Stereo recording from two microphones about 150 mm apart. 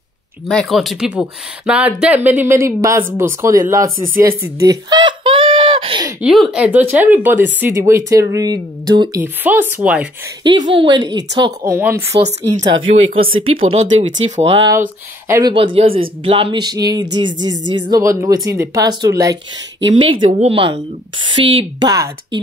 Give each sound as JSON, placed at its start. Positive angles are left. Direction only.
{"t": 0.5, "sound": "speech", "side_deg": 0}
{"t": 3.7, "sound": "a sound", "side_deg": -20}
{"t": 6.2, "sound": "speech", "side_deg": 0}
{"t": 9.2, "sound": "speech", "side_deg": -15}
{"t": 10.4, "sound": "a sound", "side_deg": -30}
{"t": 11.7, "sound": "speech", "side_deg": -15}
{"t": 13.1, "sound": "speech", "side_deg": -35}
{"t": 14.7, "sound": "speech", "side_deg": -15}
{"t": 15.4, "sound": "speech", "side_deg": -35}
{"t": 16.3, "sound": "a sound", "side_deg": -35}
{"t": 20.2, "sound": "speech", "side_deg": -45}